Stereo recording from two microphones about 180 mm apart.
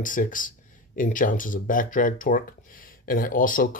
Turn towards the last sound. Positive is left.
turn(degrees=50)  # may be behind; listen again after turning